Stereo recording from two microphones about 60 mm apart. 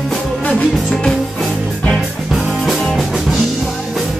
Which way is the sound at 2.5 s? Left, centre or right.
Centre.